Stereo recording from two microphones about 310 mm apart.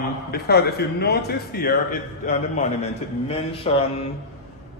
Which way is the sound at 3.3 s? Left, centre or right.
Centre.